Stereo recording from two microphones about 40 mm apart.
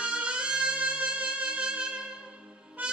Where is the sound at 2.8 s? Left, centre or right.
Right.